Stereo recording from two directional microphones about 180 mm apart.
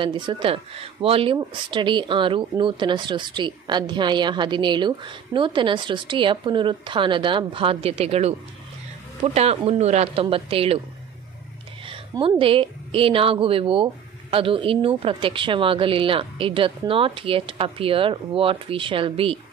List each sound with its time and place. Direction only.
0.0 s speech: 25° right (ahead or behind)
11.9 s a woman's voice: 30° right (ahead or behind)